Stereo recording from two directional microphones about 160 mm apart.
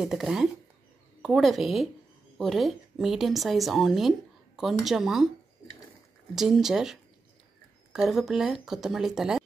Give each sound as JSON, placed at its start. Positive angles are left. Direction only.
{"t": 0.0, "sound": "a woman's voice", "side_deg": -5}
{"t": 6.3, "sound": "a woman's voice", "side_deg": 0}